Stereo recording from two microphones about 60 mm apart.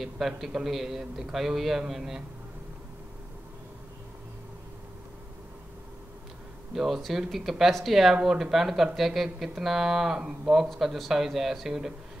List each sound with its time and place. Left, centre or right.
0.4 s a man's voice: centre
6.7 s speech: centre